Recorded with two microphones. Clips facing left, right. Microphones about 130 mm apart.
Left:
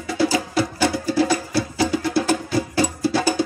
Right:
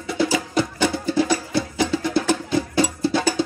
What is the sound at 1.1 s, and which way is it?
Music, 20° right (ahead or behind).